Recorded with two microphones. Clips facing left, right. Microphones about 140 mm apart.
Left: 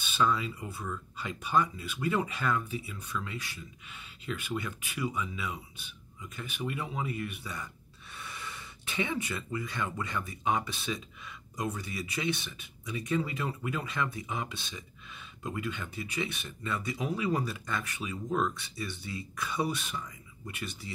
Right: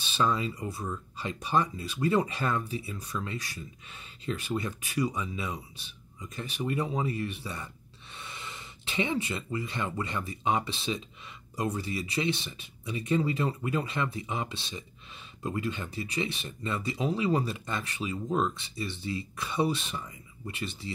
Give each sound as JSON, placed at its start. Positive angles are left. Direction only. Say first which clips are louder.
{"t": 0.0, "sound": "speech", "louder": "right 1 dB", "side_deg": -35}